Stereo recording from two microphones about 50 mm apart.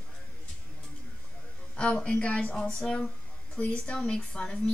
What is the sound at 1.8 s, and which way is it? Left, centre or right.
Speech, centre.